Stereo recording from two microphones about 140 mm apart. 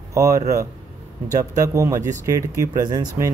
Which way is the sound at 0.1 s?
20° right (ahead or behind).